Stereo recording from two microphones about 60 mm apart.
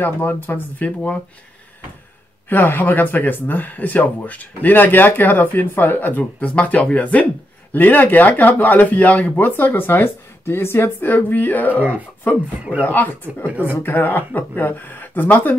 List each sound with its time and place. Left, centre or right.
0.0 s speech: left
0.8 s speech: left
2.5 s speech: left
11.7 s speech: right
12.8 s speech: left